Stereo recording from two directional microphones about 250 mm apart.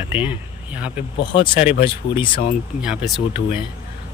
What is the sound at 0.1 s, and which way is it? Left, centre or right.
Speech, centre.